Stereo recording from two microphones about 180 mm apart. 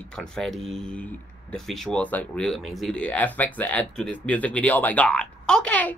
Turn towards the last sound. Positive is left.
turn(degrees=10)  # may be behind; listen again after turning